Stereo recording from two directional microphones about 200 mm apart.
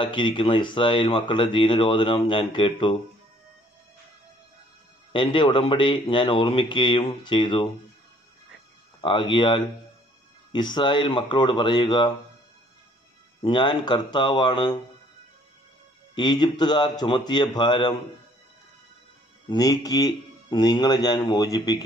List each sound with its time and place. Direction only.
0.0 s speech: 25° left (ahead or behind)
5.1 s speech: 25° left (ahead or behind)
9.0 s speech: 25° left (ahead or behind)
13.4 s speech: 25° left (ahead or behind)
16.2 s speech: 20° left (ahead or behind)
19.5 s speech: 20° left (ahead or behind)